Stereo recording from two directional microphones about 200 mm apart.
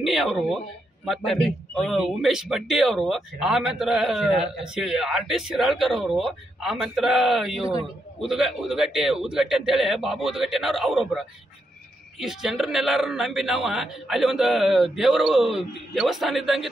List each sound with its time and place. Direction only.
0.0 s a man's voice: centre (ahead or behind)